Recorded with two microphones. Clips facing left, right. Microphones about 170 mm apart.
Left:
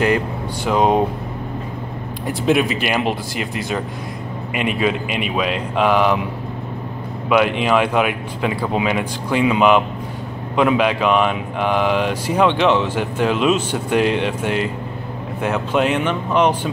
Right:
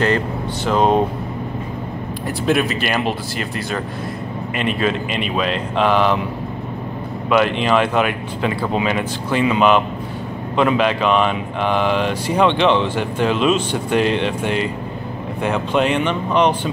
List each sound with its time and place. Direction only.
0.7 s speech: 10° left (ahead or behind)
2.2 s speech: 15° left (ahead or behind)
7.2 s speech: 10° left (ahead or behind)